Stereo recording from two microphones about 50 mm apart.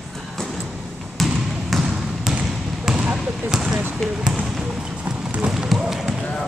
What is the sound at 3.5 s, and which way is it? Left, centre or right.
Basketball bounce, centre.